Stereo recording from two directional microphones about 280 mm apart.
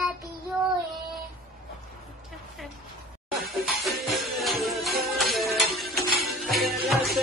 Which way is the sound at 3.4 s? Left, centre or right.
Centre.